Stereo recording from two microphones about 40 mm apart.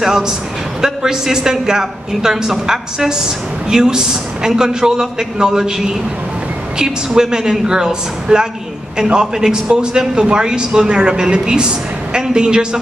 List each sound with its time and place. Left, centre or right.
0.7 s a woman's voice: centre